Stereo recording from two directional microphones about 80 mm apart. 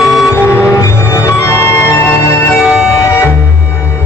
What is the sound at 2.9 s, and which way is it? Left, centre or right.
Music, left.